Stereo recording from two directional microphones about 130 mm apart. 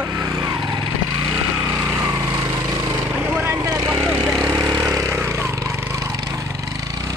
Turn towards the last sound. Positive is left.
turn(degrees=-20)  # may be behind; listen again after turning